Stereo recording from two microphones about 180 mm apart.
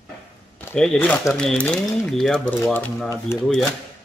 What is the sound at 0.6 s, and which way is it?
Speech, 5° left (ahead or behind).